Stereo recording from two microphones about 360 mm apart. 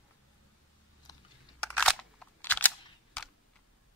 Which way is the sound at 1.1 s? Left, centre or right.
Centre.